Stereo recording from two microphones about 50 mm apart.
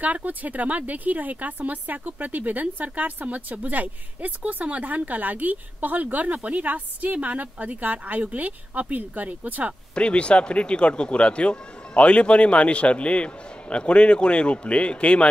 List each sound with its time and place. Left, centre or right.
0.0 s speech: right
9.9 s speech: left